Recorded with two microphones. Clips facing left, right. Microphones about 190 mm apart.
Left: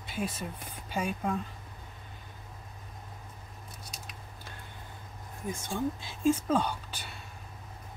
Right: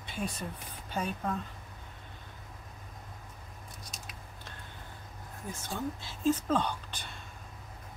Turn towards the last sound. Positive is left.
turn(degrees=5)  # may be behind; listen again after turning